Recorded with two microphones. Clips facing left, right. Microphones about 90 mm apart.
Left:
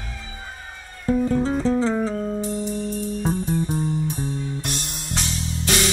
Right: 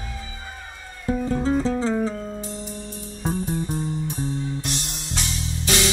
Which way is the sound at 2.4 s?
50° left (ahead or behind).